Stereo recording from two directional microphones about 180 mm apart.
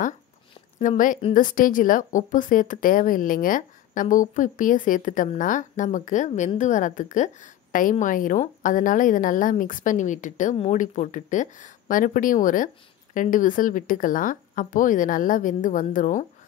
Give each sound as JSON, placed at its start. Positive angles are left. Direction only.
{"t": 0.7, "sound": "speech", "side_deg": 45}